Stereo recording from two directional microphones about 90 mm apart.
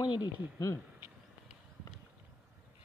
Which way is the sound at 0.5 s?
35° left (ahead or behind).